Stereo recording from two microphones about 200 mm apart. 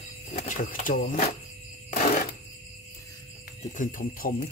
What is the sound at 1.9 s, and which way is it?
Cash register, 40° left (ahead or behind).